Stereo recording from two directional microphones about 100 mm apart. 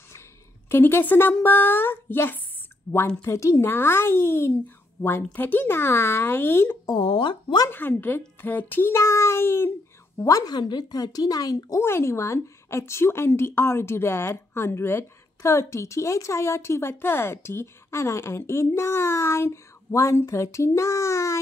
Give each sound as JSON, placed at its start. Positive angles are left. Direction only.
{"t": 0.7, "sound": "a woman's voice", "side_deg": 25}
{"t": 7.0, "sound": "speech", "side_deg": 60}
{"t": 7.7, "sound": "a woman's voice", "side_deg": 20}
{"t": 10.1, "sound": "speech", "side_deg": 35}
{"t": 11.8, "sound": "a woman's voice", "side_deg": 25}